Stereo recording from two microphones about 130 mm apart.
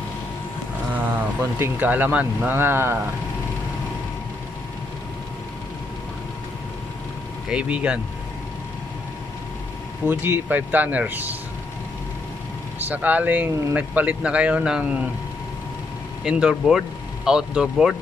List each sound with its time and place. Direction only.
0.9 s speech: 15° right (ahead or behind)
7.4 s a man's voice: 10° right (ahead or behind)
10.0 s a man's voice: 15° right (ahead or behind)
12.8 s a man's voice: 10° right (ahead or behind)
16.3 s speech: 5° right (ahead or behind)